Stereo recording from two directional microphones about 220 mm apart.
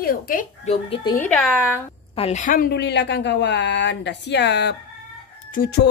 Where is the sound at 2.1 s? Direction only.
30° left (ahead or behind).